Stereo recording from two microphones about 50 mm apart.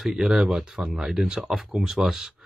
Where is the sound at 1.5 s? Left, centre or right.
Centre.